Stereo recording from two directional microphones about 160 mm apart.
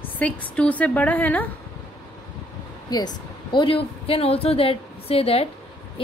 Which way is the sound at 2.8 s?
25° left (ahead or behind).